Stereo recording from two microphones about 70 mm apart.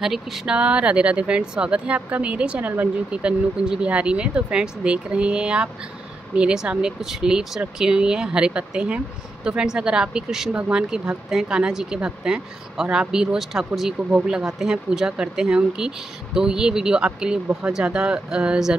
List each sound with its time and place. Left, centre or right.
0.0 s speech: centre
0.6 s speech: centre